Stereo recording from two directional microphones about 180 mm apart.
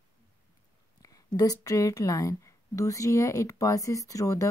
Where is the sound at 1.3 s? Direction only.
20° left (ahead or behind).